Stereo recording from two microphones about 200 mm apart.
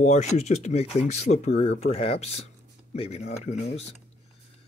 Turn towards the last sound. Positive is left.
turn(degrees=35)  # may be behind; listen again after turning